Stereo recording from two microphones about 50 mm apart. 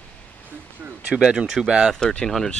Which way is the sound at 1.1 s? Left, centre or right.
Centre.